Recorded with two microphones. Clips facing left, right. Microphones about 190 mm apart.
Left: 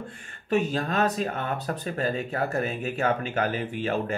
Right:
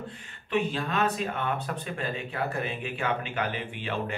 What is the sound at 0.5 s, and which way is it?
Speech, 45° left (ahead or behind).